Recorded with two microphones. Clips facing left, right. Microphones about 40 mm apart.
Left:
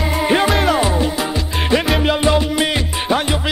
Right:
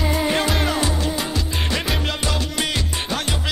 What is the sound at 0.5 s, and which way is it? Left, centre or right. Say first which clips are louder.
Music: left 6 dB; centre.